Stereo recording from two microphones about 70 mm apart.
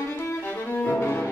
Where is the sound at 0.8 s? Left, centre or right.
Left.